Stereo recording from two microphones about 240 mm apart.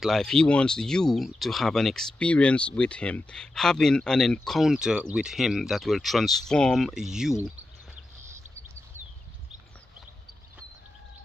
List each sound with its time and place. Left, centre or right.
0.0 s speech: centre